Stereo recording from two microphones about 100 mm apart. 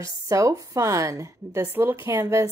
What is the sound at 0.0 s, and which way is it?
A woman's voice, 35° right (ahead or behind).